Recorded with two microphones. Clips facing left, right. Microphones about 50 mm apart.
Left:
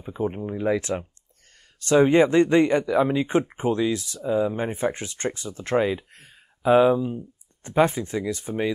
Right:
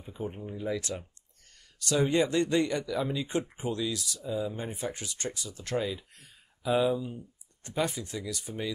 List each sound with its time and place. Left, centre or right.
0.0 s speech: left
0.7 s speech: left